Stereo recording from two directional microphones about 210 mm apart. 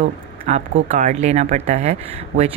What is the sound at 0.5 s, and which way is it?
Speech, 35° right (ahead or behind).